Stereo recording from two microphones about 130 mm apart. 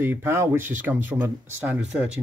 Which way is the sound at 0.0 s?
15° right (ahead or behind).